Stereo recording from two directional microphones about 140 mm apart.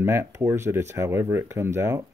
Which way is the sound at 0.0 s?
20° right (ahead or behind).